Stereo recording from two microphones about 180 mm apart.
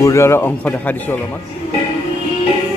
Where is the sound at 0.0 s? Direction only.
15° left (ahead or behind).